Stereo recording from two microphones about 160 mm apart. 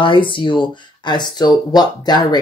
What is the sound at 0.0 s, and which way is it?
Speech, 30° left (ahead or behind).